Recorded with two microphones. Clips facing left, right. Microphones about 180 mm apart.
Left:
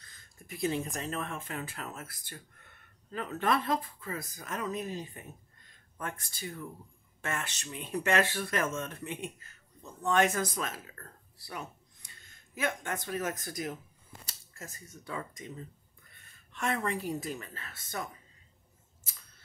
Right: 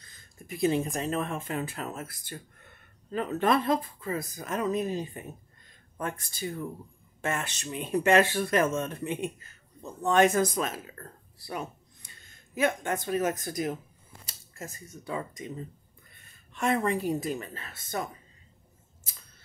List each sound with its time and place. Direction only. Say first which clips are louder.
0.5 s speech: right 6 dB; 20° right (ahead or behind)